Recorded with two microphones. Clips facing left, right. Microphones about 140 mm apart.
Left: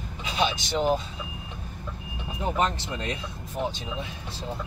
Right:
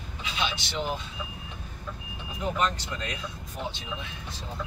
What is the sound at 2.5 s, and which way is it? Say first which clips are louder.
Speech: left 3 dB; 25° left (ahead or behind).